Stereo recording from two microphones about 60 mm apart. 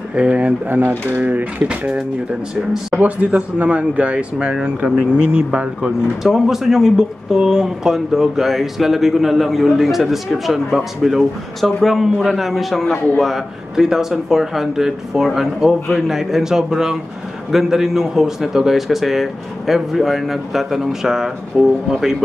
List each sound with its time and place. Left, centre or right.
0.1 s speech: centre
5.9 s speech: centre